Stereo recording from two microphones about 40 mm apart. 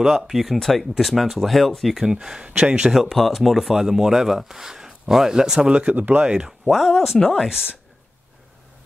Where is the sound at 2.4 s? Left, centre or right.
Right.